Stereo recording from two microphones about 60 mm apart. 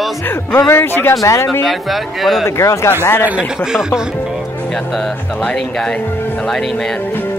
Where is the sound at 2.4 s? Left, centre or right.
Left.